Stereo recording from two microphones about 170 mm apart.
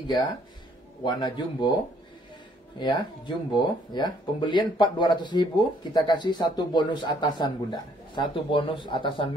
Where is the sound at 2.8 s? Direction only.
25° left (ahead or behind).